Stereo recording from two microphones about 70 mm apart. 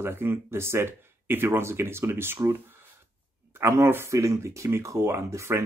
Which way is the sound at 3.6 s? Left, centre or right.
Right.